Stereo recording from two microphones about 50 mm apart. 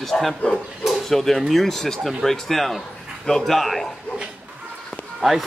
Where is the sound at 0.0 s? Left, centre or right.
Centre.